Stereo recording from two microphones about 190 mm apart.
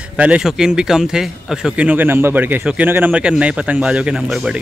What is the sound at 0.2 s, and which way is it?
Speech, 5° right (ahead or behind).